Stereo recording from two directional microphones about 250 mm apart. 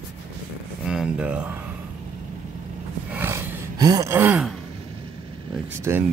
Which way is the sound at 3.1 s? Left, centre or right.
Centre.